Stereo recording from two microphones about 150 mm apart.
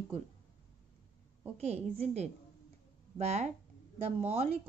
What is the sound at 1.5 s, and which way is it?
Speech, 45° right (ahead or behind).